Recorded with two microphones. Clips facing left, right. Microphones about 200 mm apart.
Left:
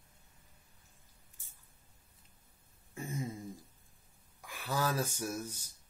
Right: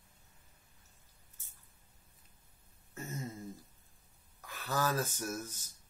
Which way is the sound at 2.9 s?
10° left (ahead or behind).